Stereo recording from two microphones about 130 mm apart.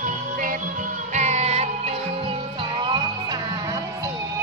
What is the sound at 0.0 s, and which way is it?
Music, 90° right.